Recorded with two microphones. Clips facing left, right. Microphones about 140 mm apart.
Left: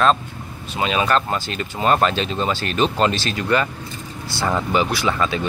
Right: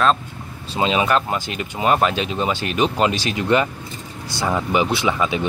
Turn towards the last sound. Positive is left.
turn(degrees=-15)  # may be behind; listen again after turning